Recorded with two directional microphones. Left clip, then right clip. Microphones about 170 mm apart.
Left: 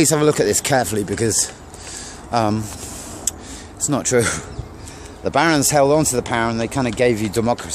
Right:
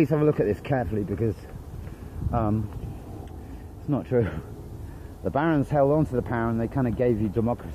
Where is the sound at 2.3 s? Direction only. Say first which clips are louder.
Left 9 dB; 35° left (ahead or behind).